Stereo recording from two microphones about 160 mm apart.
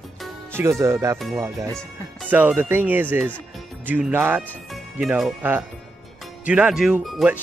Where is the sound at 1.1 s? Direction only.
Centre (ahead or behind).